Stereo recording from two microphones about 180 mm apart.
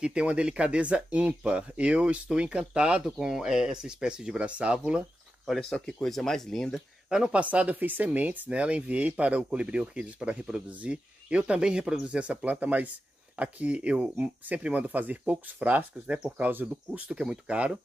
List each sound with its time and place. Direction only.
0.0 s speech: 5° right (ahead or behind)